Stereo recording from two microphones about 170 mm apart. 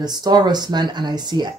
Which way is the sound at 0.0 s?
25° right (ahead or behind).